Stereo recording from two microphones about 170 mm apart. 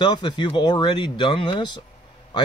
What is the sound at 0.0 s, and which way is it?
Speech, 25° left (ahead or behind).